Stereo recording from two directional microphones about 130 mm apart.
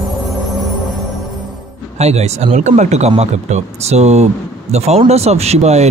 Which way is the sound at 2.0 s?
55° right (ahead or behind).